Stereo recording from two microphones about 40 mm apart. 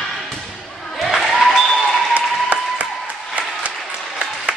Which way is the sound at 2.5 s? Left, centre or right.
Right.